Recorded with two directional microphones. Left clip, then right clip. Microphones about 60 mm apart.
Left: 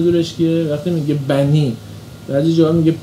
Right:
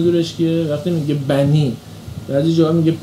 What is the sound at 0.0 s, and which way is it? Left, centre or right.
Speech, left.